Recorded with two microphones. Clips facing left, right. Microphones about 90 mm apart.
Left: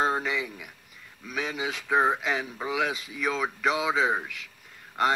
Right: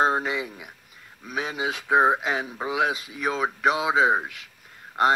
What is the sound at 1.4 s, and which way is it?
Speech, 45° right (ahead or behind).